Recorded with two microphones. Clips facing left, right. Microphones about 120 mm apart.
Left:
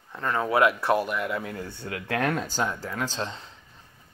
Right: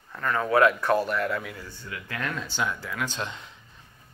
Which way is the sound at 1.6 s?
65° left (ahead or behind).